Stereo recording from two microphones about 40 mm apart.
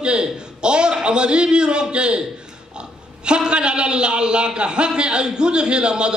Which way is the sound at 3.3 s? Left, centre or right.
Right.